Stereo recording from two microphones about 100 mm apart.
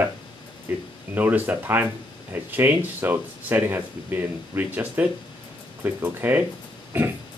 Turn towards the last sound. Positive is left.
turn(degrees=-20)  # may be behind; listen again after turning